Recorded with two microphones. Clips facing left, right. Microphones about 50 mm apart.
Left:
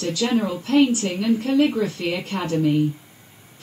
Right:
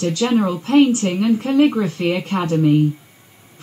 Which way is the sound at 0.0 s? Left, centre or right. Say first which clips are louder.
Right 4 dB; right.